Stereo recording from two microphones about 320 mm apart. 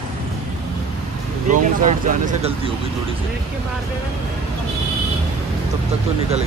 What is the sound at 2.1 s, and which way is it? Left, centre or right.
Speech, right.